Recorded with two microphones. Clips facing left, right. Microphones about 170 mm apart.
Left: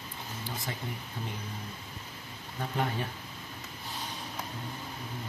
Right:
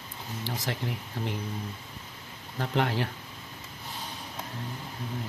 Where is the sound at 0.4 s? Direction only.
85° right.